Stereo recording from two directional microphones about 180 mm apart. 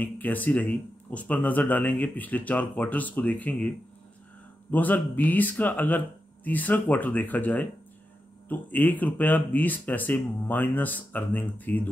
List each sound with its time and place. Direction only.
0.0 s speech: 10° left (ahead or behind)